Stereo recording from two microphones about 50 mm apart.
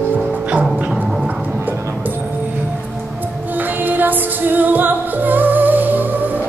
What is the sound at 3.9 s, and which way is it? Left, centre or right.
Music, right.